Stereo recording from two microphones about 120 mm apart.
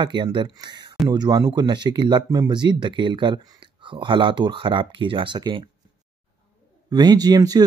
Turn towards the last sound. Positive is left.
turn(degrees=-35)  # may be behind; listen again after turning